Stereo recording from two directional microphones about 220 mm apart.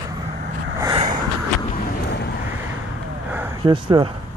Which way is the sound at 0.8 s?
20° right (ahead or behind).